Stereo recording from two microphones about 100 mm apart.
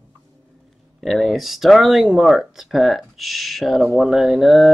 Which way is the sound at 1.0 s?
Centre (ahead or behind).